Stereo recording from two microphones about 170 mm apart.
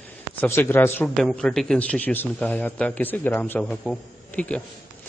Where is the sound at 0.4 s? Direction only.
10° left (ahead or behind).